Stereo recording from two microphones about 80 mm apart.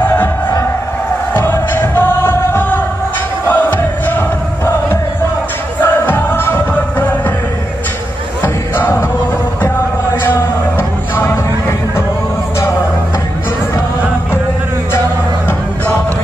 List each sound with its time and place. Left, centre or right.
0.0 s music: left
3.4 s crowd: left
5.8 s music: left
8.7 s music: left
9.6 s a sound: left
10.8 s music: left